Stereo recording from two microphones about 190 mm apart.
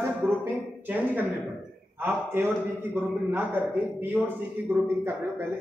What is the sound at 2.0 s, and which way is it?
A man's voice, 10° right (ahead or behind).